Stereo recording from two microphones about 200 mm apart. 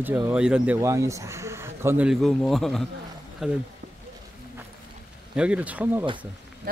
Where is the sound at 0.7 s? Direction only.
15° right (ahead or behind).